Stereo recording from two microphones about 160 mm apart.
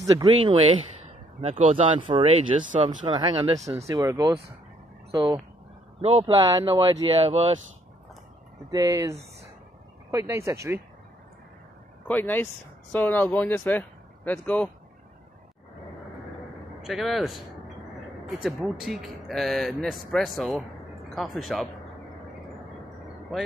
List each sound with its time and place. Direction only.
0.0 s speech: 25° right (ahead or behind)
1.7 s speech: 35° right (ahead or behind)
6.3 s speech: 20° right (ahead or behind)
8.6 s speech: 20° right (ahead or behind)
12.1 s speech: 10° left (ahead or behind)
16.8 s speech: centre (ahead or behind)